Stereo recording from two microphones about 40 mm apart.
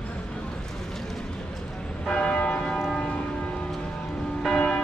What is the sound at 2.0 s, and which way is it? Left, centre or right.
Church bell, left.